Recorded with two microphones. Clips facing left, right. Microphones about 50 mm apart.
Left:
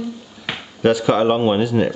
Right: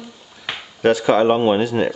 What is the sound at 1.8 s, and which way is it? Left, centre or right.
Speech, right.